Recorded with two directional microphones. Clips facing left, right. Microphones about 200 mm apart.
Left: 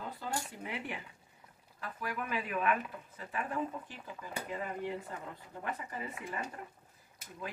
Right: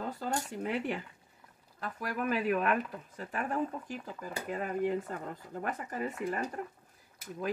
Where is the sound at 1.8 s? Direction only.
40° right (ahead or behind).